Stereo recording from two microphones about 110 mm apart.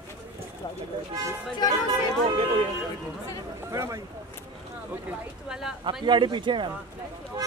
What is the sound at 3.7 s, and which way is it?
Speech, 30° right (ahead or behind).